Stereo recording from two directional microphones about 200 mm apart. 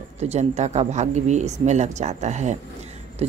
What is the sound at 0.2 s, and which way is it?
Speech, 35° right (ahead or behind).